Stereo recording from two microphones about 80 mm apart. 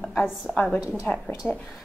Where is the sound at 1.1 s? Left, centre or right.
Left.